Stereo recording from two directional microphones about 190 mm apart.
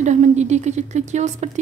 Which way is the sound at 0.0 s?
40° right (ahead or behind).